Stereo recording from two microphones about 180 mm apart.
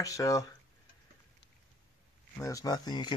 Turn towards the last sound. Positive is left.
turn(degrees=25)  # may be behind; listen again after turning